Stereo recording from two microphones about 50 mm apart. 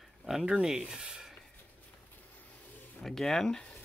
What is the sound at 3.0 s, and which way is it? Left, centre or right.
Speech, centre.